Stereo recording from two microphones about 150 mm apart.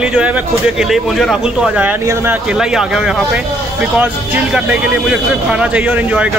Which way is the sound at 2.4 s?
5° right (ahead or behind).